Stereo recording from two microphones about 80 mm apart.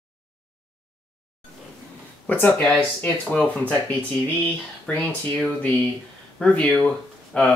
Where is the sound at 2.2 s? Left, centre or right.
Left.